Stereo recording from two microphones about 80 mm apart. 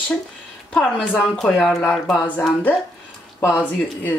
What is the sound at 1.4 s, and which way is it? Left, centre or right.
Speech, centre.